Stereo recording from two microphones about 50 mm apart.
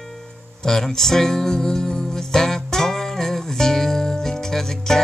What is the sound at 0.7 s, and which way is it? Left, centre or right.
Music, centre.